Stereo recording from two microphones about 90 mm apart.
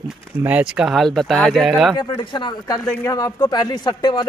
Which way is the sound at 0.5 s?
15° right (ahead or behind).